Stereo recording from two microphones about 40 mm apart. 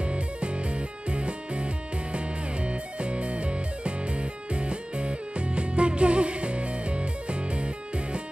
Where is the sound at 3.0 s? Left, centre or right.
Right.